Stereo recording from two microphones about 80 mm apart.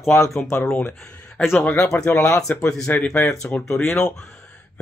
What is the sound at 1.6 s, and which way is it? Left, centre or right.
Speech, left.